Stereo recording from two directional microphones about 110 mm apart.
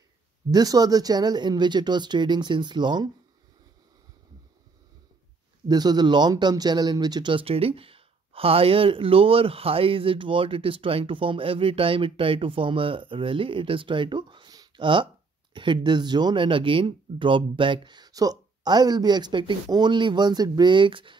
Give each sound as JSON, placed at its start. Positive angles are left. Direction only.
{"t": 0.5, "sound": "speech", "side_deg": -35}
{"t": 5.7, "sound": "speech", "side_deg": -40}